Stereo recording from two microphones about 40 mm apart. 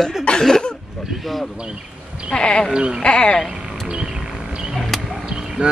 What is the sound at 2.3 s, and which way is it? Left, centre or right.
Speech, left.